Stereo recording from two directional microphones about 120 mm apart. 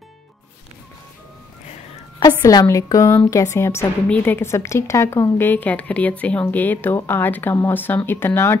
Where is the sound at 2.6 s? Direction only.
25° left (ahead or behind).